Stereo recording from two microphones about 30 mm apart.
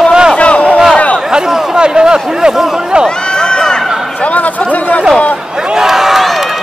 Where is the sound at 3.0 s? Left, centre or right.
Left.